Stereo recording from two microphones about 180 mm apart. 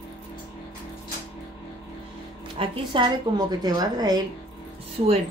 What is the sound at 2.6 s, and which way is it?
A woman's voice, 30° right (ahead or behind).